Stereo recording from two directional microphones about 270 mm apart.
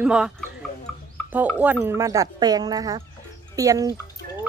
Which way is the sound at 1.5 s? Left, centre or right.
Centre.